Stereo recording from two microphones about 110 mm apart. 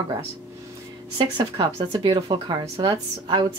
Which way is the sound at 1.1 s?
40° right (ahead or behind).